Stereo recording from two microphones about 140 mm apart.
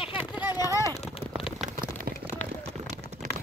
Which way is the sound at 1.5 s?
65° right (ahead or behind).